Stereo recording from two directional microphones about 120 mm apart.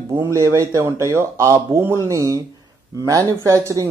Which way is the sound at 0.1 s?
25° right (ahead or behind).